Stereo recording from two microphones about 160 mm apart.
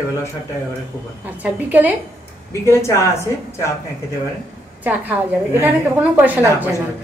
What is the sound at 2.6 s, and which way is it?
Speech, 15° left (ahead or behind).